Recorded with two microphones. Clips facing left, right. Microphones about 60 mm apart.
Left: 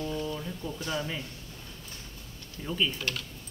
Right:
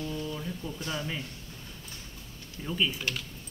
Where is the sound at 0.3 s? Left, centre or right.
Centre.